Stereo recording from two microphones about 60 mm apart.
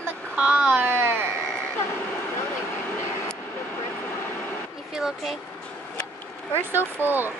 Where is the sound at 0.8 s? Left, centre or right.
Right.